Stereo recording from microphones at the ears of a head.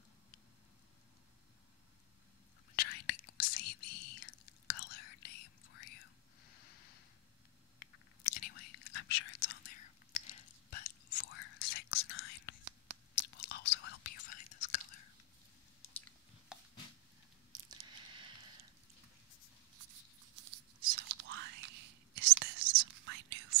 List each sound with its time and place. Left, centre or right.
2.7 s whispering: left
17.5 s a sound: right
19.7 s whispering: right